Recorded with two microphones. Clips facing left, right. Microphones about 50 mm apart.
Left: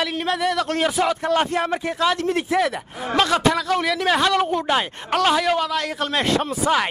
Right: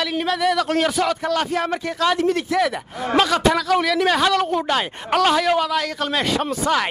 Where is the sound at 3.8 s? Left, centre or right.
Centre.